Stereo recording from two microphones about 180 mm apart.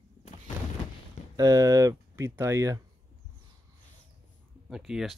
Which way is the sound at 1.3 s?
20° right (ahead or behind).